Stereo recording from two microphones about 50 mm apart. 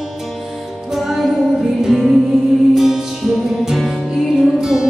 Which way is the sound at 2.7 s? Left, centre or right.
Centre.